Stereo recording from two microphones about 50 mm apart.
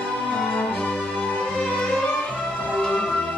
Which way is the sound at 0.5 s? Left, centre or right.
Left.